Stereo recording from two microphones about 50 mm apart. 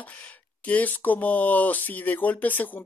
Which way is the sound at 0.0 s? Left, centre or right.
Left.